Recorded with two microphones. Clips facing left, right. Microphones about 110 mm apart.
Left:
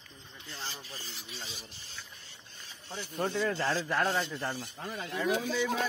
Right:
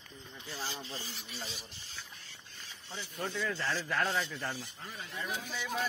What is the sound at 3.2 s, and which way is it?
Speech, 40° left (ahead or behind).